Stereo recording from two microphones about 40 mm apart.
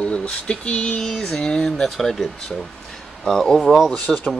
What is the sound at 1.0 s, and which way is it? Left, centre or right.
Speech, centre.